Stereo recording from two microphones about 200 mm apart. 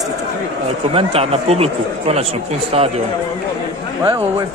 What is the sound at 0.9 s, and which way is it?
Speech, 30° right (ahead or behind).